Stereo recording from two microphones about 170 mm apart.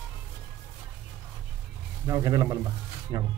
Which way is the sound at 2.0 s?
20° right (ahead or behind).